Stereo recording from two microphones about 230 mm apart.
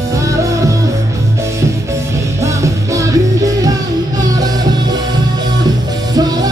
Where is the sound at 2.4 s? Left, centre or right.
Centre.